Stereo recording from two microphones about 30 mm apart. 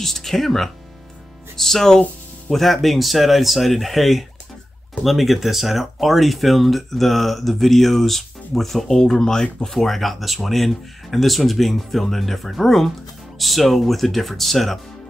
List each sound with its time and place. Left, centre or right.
0.0 s speech: centre
9.7 s speech: centre